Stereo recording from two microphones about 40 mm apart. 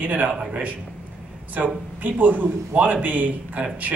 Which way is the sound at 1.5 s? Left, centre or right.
Right.